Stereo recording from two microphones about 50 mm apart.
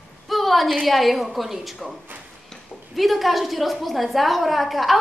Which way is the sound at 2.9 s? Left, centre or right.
Centre.